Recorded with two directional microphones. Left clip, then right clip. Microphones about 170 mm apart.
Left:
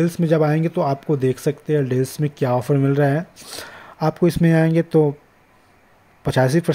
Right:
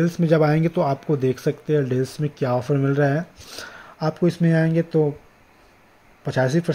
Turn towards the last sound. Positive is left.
turn(degrees=20)  # may be behind; listen again after turning